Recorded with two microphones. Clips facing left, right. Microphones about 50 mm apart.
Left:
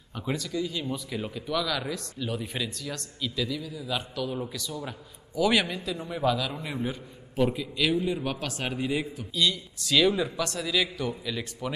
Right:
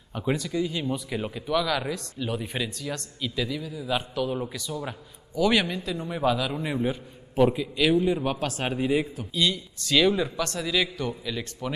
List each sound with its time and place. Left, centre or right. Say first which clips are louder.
0.1 s speech: right 4 dB; centre
5.3 s speech: right 1 dB; centre
6.0 s speech: right 2 dB; centre
8.2 s a man's voice: right 4 dB; right; by 11.7 s centre